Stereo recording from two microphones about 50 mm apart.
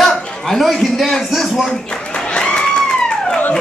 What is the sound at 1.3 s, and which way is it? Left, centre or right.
Speech, centre.